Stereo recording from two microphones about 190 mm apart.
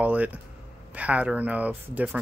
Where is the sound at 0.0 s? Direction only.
10° right (ahead or behind).